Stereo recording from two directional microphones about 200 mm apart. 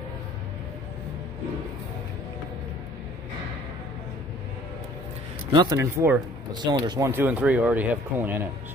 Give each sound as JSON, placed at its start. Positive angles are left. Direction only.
{"t": 5.5, "sound": "speech", "side_deg": -20}
{"t": 5.8, "sound": "speech", "side_deg": -10}
{"t": 6.5, "sound": "speech", "side_deg": -20}